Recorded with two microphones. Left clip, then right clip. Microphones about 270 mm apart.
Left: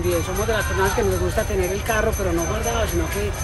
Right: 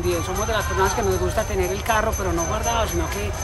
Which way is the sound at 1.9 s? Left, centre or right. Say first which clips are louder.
Right 1 dB; right.